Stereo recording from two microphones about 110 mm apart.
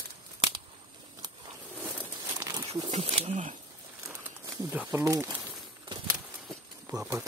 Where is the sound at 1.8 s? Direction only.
20° right (ahead or behind).